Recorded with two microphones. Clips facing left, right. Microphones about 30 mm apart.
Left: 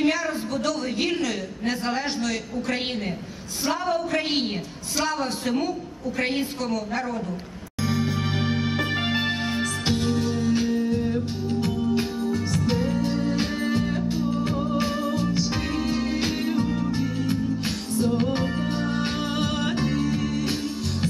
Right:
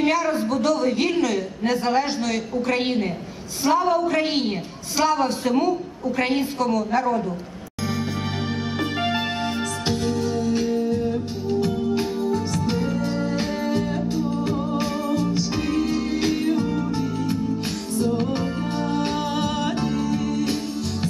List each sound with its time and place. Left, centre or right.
0.0 s a man's voice: centre
7.8 s music: centre
19.9 s music: left